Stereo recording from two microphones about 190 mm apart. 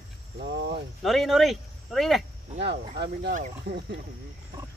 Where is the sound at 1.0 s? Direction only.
Centre (ahead or behind).